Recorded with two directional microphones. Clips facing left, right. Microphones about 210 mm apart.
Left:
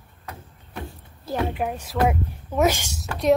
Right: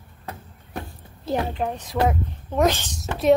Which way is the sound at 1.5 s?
10° left (ahead or behind).